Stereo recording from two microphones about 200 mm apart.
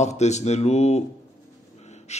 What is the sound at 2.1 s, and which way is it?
Gasp, 35° left (ahead or behind).